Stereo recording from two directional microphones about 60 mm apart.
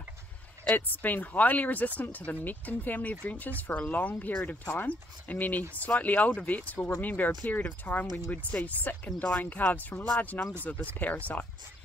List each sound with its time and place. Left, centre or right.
0.7 s speech: left